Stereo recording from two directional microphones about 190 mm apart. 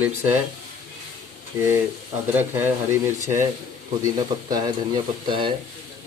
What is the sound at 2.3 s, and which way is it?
Speech, 10° right (ahead or behind).